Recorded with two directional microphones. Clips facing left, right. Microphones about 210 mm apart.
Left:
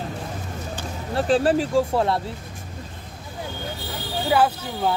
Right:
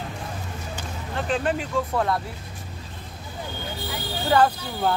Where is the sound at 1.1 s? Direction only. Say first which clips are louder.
Left 6 dB; 35° left (ahead or behind).